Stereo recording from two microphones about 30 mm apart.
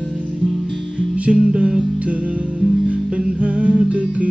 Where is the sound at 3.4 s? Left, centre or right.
Right.